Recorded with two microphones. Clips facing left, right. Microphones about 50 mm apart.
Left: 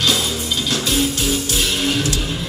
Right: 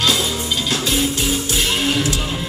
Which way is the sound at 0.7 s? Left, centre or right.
Right.